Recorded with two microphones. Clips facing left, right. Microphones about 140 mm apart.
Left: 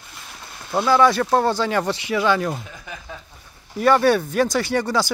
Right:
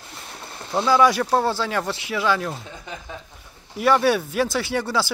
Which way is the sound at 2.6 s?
25° right (ahead or behind).